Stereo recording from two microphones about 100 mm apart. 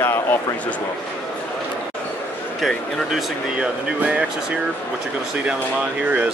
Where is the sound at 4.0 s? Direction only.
10° right (ahead or behind).